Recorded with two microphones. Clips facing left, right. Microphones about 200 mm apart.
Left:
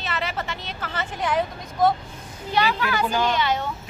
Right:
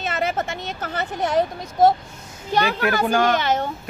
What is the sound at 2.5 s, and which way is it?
A woman's voice, 50° right (ahead or behind).